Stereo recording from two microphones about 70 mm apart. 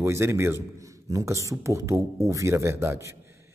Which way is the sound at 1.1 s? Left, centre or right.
Right.